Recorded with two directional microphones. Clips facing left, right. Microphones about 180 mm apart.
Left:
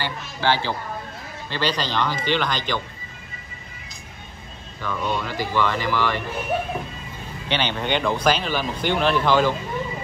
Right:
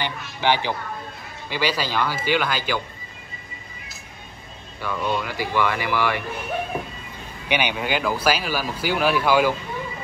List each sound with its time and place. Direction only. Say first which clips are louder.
0.0 s speech: even; 15° right (ahead or behind)
4.8 s speech: right 1 dB; 10° right (ahead or behind)
7.4 s speech: right 1 dB; 10° right (ahead or behind)